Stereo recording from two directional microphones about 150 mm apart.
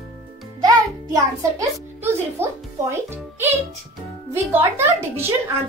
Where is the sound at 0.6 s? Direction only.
25° right (ahead or behind).